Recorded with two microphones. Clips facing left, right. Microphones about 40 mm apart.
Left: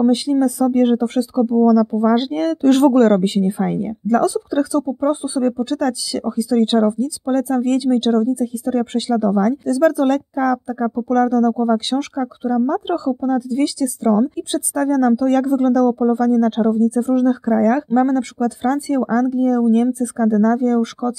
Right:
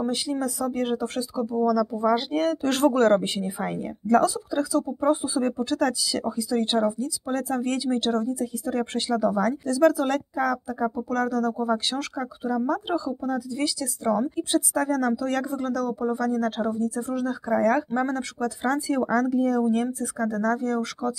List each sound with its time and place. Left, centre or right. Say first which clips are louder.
0.1 s speech: left 11 dB; centre
2.3 s speech: left 9 dB; centre
5.0 s speech: left 4 dB; centre
6.2 s speech: left 10 dB; centre
6.9 s speech: left 8 dB; centre
12.7 s speech: left 7 dB; left; by 15.0 s centre
15.0 s speech: left 10 dB; centre
15.5 s speech: left 12 dB; left; by 17.1 s centre
17.1 s speech: left 11 dB; left
17.5 s speech: left 6 dB; centre